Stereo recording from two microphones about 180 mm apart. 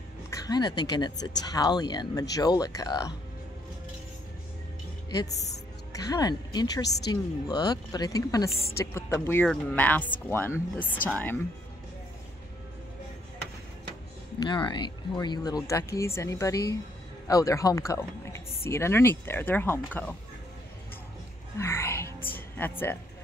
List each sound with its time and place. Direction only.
0.3 s speech: 20° left (ahead or behind)
5.9 s a woman's voice: 20° left (ahead or behind)
14.4 s a woman's voice: 25° left (ahead or behind)
21.5 s music: 15° left (ahead or behind)